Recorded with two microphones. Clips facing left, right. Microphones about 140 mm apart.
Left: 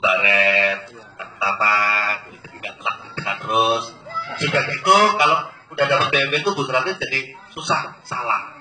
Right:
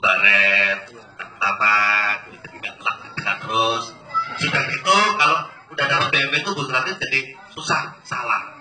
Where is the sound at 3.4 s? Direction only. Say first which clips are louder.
Left 3 dB; 50° left (ahead or behind).